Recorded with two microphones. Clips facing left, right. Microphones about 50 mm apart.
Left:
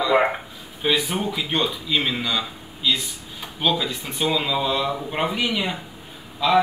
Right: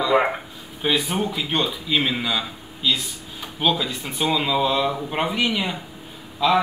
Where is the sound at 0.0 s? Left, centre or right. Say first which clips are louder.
Even; centre.